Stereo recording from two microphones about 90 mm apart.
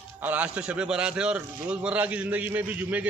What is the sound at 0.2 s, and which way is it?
A man's voice, 15° right (ahead or behind).